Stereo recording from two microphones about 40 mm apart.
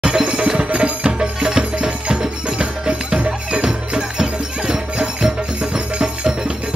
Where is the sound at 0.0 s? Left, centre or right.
Right.